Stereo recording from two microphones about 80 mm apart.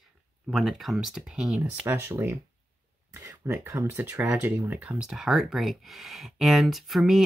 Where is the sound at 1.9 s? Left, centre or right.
Right.